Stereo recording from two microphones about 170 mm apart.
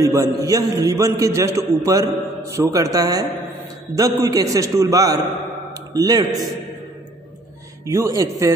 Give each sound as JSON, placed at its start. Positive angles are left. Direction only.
{"t": 0.0, "sound": "a man's voice", "side_deg": -20}
{"t": 7.8, "sound": "a man's voice", "side_deg": -15}